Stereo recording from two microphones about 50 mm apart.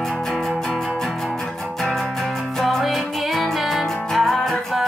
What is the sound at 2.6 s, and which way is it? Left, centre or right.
Music, centre.